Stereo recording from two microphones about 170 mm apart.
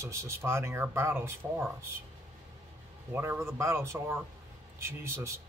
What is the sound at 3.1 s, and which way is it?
Speech, 15° right (ahead or behind).